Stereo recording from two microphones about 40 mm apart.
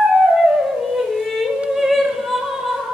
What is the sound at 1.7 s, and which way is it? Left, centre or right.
Opera, centre.